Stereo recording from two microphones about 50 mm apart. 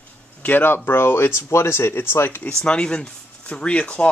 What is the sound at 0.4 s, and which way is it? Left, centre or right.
Speech, left.